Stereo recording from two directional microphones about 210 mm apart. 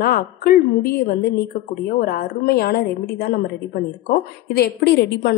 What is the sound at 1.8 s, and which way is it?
A woman's voice, 45° left (ahead or behind).